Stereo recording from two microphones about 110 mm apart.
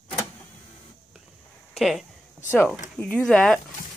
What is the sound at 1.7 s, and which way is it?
Speech, centre (ahead or behind).